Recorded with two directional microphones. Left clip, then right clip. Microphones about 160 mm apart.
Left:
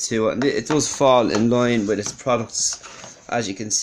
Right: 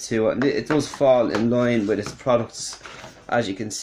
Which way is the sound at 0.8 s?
45° left (ahead or behind).